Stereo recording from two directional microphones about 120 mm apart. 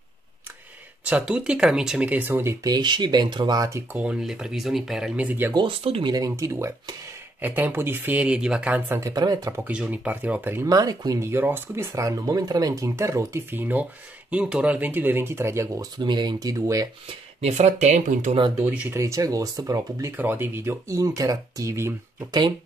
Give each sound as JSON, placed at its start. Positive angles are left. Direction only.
{"t": 1.0, "sound": "speech", "side_deg": -10}
{"t": 2.6, "sound": "speech", "side_deg": -35}
{"t": 3.9, "sound": "speech", "side_deg": -10}
{"t": 5.5, "sound": "speech", "side_deg": -45}
{"t": 6.1, "sound": "speech", "side_deg": -25}
{"t": 9.1, "sound": "speech", "side_deg": -30}
{"t": 9.7, "sound": "speech", "side_deg": -10}
{"t": 10.7, "sound": "speech", "side_deg": -30}
{"t": 16.0, "sound": "speech", "side_deg": -40}
{"t": 17.4, "sound": "speech", "side_deg": -65}
{"t": 18.6, "sound": "speech", "side_deg": -20}
{"t": 20.1, "sound": "speech", "side_deg": -15}